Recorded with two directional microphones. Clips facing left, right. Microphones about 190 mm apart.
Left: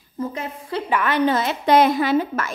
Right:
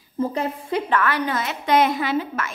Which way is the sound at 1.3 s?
30° left (ahead or behind).